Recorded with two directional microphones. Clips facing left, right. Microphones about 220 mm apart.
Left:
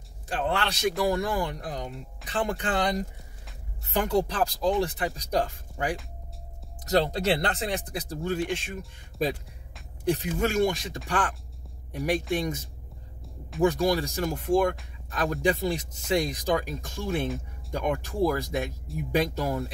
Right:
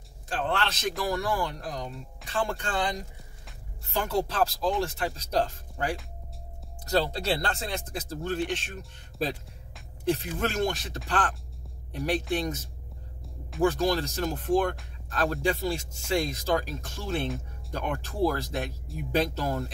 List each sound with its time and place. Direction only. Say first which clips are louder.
0.3 s speech: left 1 dB; 15° left (ahead or behind)
3.8 s speech: left 3 dB; 15° left (ahead or behind)